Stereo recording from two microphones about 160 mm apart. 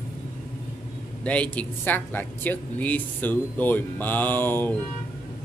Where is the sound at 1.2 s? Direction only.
10° left (ahead or behind).